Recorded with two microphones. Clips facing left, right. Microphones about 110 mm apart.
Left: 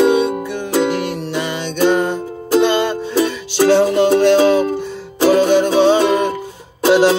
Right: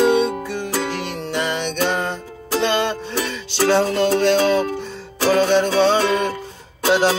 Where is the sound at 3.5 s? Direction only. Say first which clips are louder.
Left 5 dB; 15° left (ahead or behind).